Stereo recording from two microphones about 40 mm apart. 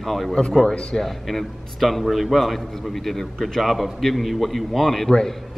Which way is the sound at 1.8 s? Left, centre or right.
Centre.